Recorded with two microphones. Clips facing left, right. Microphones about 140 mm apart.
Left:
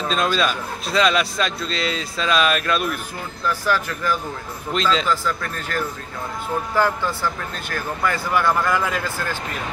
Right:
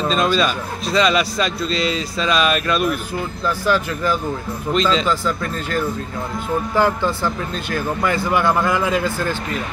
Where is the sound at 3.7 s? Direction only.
20° right (ahead or behind).